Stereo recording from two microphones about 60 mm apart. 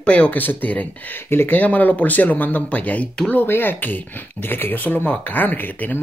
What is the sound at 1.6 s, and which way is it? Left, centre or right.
Speech, left.